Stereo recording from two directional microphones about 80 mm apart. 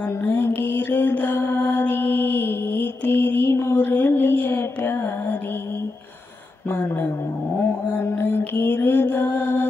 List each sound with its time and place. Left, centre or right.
0.2 s music: left
0.6 s mantra: left
7.9 s mantra: left